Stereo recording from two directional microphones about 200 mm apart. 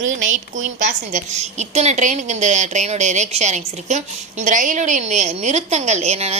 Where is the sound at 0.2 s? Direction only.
40° right (ahead or behind).